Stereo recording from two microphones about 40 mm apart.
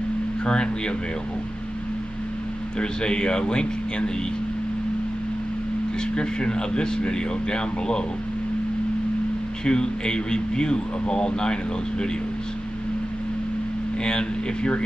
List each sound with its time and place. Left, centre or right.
0.5 s speech: left
2.8 s speech: left
6.1 s speech: left
9.7 s speech: left
14.0 s speech: left